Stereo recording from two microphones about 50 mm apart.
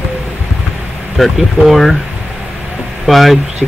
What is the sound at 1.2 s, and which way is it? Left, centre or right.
Speech, centre.